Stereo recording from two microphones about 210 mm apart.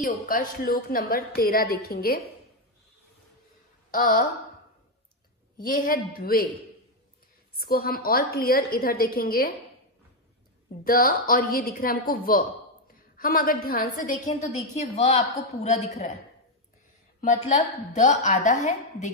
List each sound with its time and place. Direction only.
0.0 s a woman's voice: 40° left (ahead or behind)
3.9 s a woman's voice: 40° left (ahead or behind)
5.6 s a woman's voice: 45° left (ahead or behind)
7.5 s a woman's voice: 45° left (ahead or behind)
10.8 s a woman's voice: 45° left (ahead or behind)
17.2 s a woman's voice: 35° left (ahead or behind)